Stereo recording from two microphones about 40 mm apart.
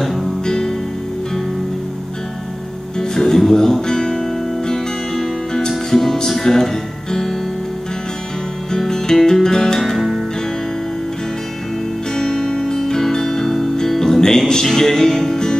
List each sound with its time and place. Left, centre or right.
0.0 s music: centre
0.5 s music: centre
3.0 s music: centre
8.7 s music: centre
9.8 s music: centre
12.2 s music: centre